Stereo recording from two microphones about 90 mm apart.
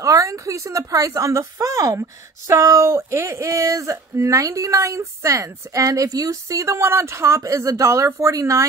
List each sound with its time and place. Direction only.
0.0 s a woman's voice: 40° right (ahead or behind)